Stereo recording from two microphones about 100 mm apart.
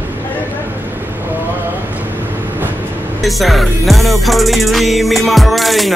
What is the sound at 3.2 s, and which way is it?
Music, centre (ahead or behind).